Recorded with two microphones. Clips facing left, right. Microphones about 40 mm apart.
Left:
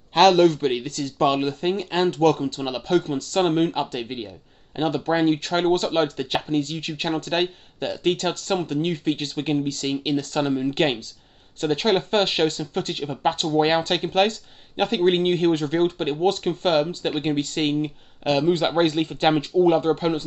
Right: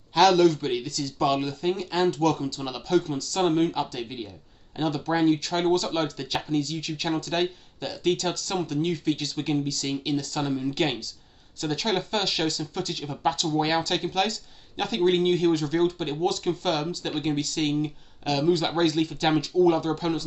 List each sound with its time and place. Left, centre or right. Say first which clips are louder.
0.1 s speech: left 3 dB; left